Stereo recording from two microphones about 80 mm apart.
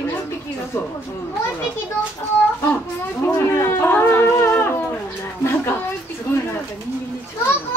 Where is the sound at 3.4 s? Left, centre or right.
Left.